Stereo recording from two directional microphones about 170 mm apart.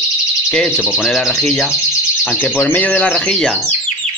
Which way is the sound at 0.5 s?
5° left (ahead or behind).